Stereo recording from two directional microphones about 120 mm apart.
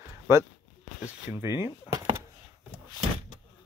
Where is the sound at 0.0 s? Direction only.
25° right (ahead or behind).